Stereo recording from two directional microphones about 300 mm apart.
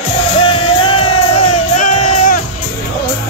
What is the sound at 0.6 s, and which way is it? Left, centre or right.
Music, centre.